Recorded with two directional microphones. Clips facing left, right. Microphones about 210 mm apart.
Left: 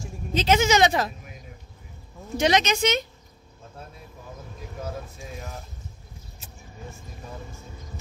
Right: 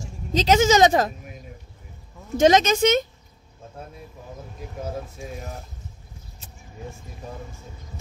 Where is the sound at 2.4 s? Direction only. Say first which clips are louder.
Right 5 dB; 45° right (ahead or behind).